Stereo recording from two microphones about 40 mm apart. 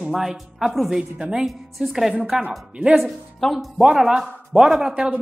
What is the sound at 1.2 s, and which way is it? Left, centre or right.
Speech, right.